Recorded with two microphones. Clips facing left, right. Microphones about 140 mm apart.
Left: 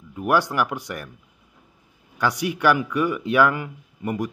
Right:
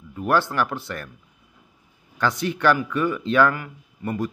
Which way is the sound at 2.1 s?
10° left (ahead or behind).